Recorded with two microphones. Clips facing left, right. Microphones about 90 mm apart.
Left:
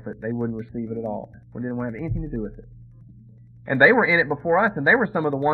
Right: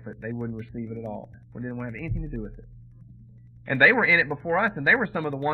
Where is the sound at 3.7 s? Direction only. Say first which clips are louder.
Left 4 dB; 25° left (ahead or behind).